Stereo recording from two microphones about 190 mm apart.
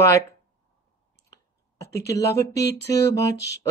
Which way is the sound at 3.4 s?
65° left (ahead or behind).